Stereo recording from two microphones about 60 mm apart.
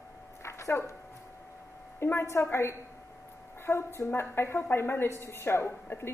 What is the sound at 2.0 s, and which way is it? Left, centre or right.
A woman's voice, left.